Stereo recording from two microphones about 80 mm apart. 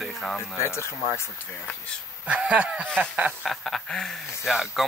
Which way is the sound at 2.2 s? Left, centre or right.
Centre.